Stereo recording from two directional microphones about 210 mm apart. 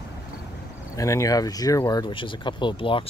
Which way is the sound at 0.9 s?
15° left (ahead or behind).